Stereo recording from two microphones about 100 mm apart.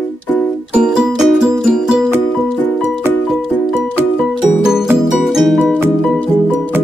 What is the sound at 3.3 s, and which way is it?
Music, centre (ahead or behind).